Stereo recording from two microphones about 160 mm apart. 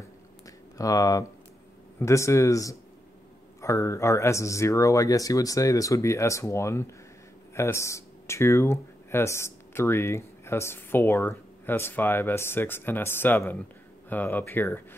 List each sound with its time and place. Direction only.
0.7 s speech: 20° left (ahead or behind)